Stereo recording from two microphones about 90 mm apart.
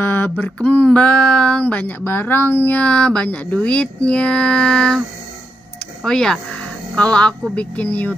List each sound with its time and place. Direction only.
0.0 s a sound: 20° left (ahead or behind)
0.7 s speech: 15° left (ahead or behind)
6.0 s speech: 5° left (ahead or behind)